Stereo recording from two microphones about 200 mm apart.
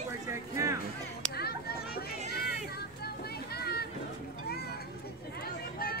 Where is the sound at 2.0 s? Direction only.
50° left (ahead or behind).